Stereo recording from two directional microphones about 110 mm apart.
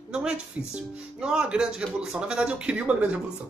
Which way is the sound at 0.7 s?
10° right (ahead or behind).